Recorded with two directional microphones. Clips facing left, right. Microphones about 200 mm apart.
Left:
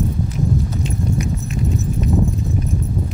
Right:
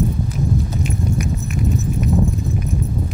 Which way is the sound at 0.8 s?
25° left (ahead or behind).